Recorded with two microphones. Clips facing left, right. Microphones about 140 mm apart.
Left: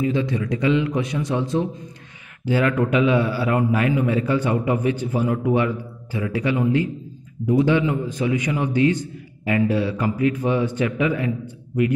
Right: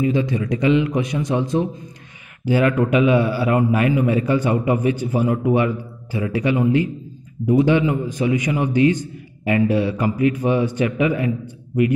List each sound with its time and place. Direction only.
0.0 s a man's voice: 15° right (ahead or behind)